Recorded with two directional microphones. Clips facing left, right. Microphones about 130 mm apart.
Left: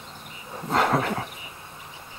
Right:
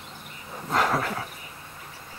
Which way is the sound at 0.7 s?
30° left (ahead or behind).